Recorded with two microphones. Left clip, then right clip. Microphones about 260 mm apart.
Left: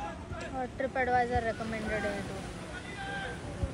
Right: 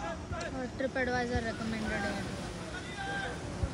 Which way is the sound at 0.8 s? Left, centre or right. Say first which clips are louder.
Left 4 dB; left.